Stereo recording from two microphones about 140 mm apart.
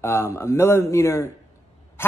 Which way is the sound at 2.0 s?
15° left (ahead or behind).